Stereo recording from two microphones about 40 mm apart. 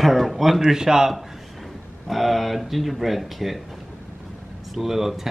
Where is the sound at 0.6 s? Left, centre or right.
Centre.